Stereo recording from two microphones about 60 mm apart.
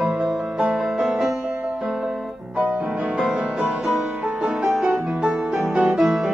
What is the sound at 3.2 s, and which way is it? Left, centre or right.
Music, centre.